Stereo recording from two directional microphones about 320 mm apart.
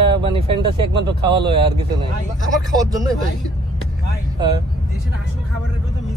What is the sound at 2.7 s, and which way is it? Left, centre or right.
Speech, centre.